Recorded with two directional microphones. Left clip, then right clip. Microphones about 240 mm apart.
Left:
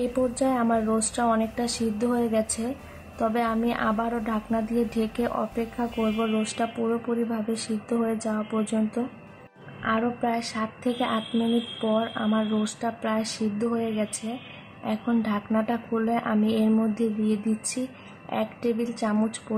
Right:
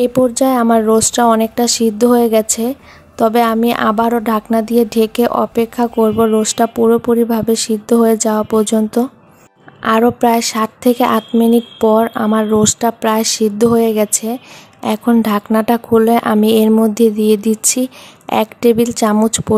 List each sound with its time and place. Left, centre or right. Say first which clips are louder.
0.0 s a woman's voice: right 13 dB; right